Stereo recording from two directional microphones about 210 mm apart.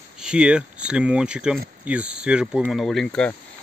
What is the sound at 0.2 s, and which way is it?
Speech, 5° right (ahead or behind).